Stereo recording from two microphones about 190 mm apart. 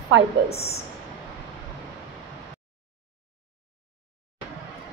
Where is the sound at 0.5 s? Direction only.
35° left (ahead or behind).